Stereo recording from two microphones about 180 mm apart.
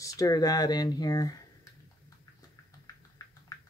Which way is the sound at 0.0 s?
20° left (ahead or behind).